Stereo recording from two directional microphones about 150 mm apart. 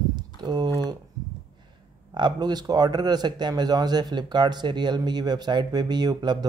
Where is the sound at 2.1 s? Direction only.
30° right (ahead or behind).